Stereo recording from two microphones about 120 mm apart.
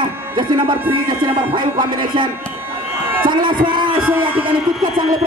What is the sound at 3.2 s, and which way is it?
Speech, 40° right (ahead or behind).